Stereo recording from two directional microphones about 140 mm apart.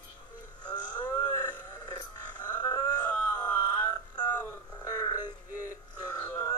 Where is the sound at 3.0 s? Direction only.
10° left (ahead or behind).